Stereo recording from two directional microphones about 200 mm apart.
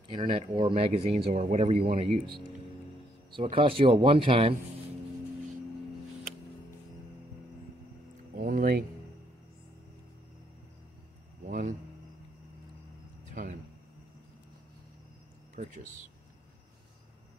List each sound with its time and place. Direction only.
0.1 s speech: 25° right (ahead or behind)
3.3 s speech: 25° right (ahead or behind)
8.4 s speech: 45° right (ahead or behind)
11.4 s speech: 40° right (ahead or behind)
13.2 s a sound: 40° right (ahead or behind)
15.5 s speech: 40° right (ahead or behind)